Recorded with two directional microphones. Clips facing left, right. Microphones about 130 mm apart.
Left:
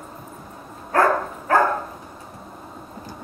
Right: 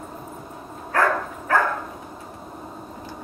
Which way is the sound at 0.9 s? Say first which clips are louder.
Left 3 dB; 35° left (ahead or behind).